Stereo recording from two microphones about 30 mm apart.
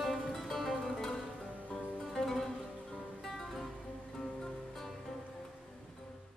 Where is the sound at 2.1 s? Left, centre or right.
Centre.